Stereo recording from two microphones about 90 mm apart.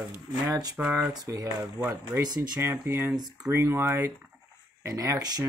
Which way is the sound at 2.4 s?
30° right (ahead or behind).